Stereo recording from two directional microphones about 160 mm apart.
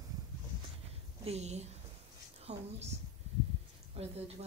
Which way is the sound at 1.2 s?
40° right (ahead or behind).